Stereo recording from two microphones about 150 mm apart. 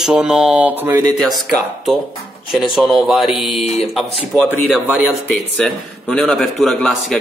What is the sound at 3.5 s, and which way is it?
Speech, 50° left (ahead or behind).